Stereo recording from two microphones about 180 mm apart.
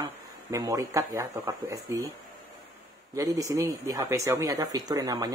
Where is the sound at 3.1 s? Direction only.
20° right (ahead or behind).